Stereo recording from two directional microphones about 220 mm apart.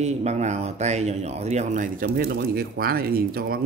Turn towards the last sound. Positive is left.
turn(degrees=-40)  # may be behind; listen again after turning